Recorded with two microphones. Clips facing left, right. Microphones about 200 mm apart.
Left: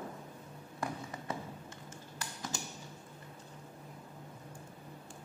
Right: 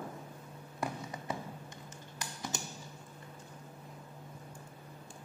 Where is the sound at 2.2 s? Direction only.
20° right (ahead or behind).